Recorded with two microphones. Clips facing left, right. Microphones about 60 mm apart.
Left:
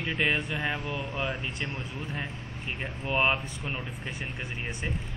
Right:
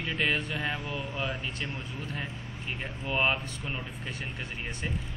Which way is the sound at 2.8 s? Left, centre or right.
Centre.